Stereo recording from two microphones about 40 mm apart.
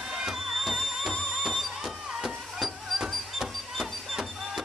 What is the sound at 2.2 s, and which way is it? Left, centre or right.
Music, centre.